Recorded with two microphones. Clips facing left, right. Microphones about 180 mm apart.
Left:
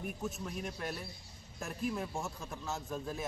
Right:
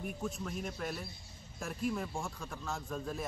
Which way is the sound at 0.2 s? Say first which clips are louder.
Right 1 dB; centre (ahead or behind).